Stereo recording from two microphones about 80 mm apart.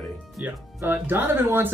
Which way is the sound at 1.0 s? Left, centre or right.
Right.